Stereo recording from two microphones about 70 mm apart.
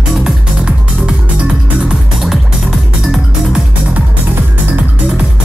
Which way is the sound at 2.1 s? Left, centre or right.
Centre.